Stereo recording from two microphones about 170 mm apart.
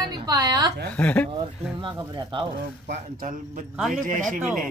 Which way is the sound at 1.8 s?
30° right (ahead or behind).